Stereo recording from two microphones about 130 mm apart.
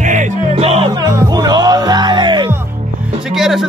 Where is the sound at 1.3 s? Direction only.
30° right (ahead or behind).